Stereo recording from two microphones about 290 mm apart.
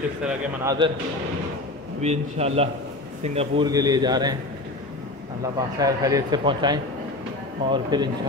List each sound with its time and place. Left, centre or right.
0.2 s speech: centre
2.0 s a man's voice: right
5.8 s speech: centre